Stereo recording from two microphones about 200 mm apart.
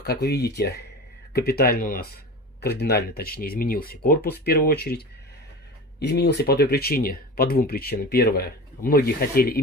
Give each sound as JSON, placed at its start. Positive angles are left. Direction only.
{"t": 0.0, "sound": "speech", "side_deg": 55}